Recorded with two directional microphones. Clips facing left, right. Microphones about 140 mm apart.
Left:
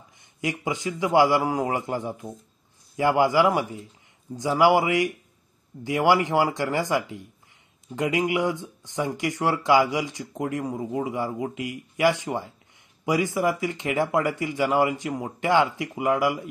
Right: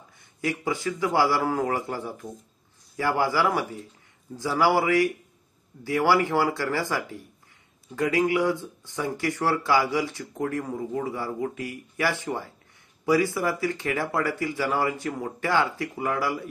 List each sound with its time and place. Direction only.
0.2 s a man's voice: 20° left (ahead or behind)